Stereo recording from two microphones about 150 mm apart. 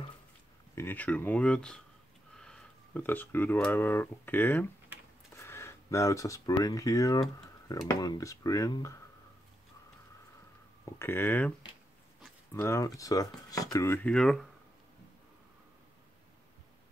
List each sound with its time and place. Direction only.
0.7 s speech: 10° left (ahead or behind)
10.9 s speech: 15° left (ahead or behind)
12.5 s speech: 20° left (ahead or behind); by 14.4 s 5° left (ahead or behind)